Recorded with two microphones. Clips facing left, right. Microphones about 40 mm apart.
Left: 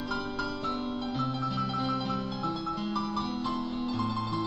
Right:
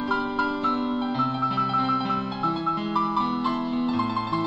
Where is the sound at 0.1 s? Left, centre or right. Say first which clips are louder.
Right 9 dB; right.